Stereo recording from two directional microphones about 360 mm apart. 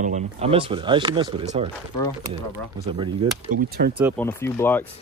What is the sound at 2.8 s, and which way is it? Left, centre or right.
Speech, centre.